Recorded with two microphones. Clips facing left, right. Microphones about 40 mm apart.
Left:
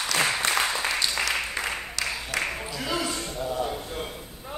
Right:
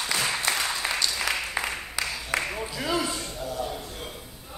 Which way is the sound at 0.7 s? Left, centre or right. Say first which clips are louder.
Left 1 dB; centre.